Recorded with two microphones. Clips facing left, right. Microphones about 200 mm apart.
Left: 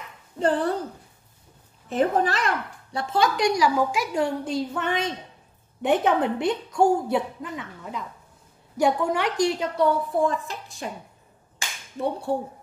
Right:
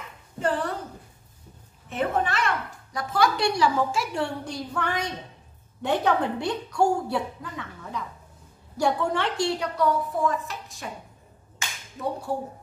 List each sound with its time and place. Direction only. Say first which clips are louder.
0.4 s speech: left 4 dB; 35° left (ahead or behind)
1.9 s speech: left 4 dB; 35° left (ahead or behind)